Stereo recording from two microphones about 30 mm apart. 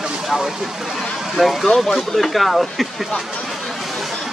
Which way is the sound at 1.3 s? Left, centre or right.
Centre.